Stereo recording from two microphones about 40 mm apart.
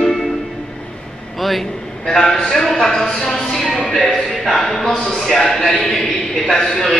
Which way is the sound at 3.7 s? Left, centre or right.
Centre.